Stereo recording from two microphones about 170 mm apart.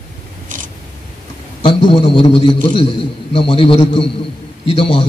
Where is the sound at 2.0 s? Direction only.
30° left (ahead or behind).